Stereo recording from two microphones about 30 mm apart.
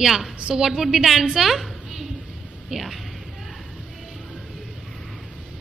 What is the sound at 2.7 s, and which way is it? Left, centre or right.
Speech, centre.